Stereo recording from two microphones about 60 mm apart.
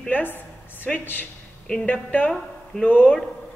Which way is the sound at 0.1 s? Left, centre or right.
Left.